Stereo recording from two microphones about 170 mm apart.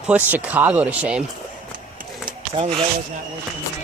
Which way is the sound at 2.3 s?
30° right (ahead or behind).